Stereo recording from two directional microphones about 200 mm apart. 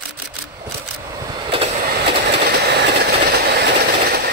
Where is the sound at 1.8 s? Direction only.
55° right (ahead or behind).